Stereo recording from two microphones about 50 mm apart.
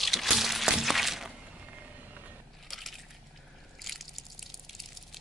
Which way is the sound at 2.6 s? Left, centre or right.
Centre.